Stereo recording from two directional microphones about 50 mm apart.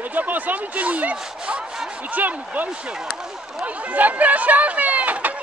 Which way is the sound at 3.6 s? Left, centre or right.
Right.